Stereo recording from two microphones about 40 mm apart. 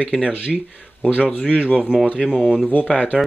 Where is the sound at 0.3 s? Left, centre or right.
Right.